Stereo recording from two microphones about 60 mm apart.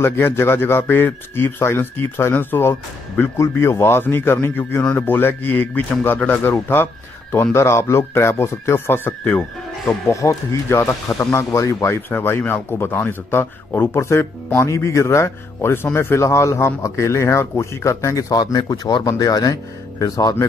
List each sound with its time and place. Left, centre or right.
0.0 s speech: left
7.5 s speech: left
10.0 s speech: left
12.1 s speech: left